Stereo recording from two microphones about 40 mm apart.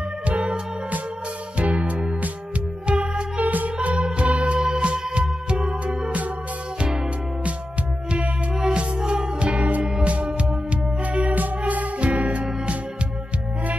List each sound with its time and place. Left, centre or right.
0.3 s music: right
1.6 s music: right
3.4 s organ: right
3.8 s music: right
8.5 s music: right
11.3 s music: right